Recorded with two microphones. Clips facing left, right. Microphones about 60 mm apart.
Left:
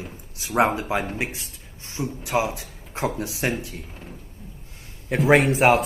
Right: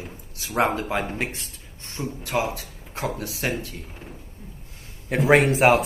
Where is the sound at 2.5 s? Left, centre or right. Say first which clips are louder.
Left 3 dB; left.